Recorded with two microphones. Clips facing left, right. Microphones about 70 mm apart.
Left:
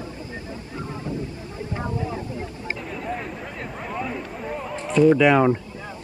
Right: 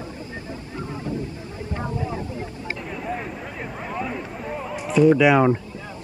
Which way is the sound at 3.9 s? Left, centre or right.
Centre.